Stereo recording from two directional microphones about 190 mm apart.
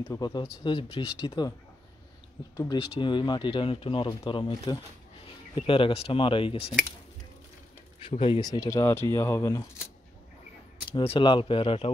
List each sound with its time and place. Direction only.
0.1 s speech: 20° left (ahead or behind)
2.5 s speech: 25° left (ahead or behind)
8.0 s speech: 30° left (ahead or behind)
10.9 s speech: 25° left (ahead or behind)